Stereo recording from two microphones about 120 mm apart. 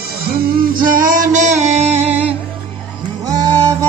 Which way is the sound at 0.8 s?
90° right.